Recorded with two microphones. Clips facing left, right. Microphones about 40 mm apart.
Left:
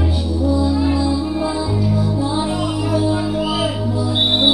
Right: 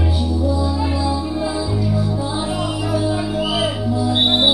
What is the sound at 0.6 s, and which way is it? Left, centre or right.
Music, centre.